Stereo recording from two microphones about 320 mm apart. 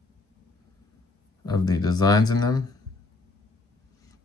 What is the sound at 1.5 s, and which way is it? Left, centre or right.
Speech, centre.